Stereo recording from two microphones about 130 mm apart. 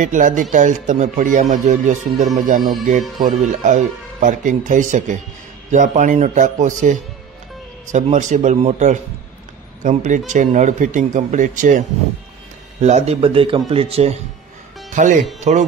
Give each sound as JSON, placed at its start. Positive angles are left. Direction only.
{"t": 0.0, "sound": "speech", "side_deg": -75}
{"t": 3.3, "sound": "speech", "side_deg": -70}
{"t": 12.8, "sound": "speech", "side_deg": -55}
{"t": 14.9, "sound": "speech", "side_deg": -70}
{"t": 15.5, "sound": "speech", "side_deg": -60}